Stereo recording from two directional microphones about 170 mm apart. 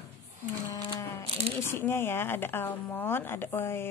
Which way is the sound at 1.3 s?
35° right (ahead or behind).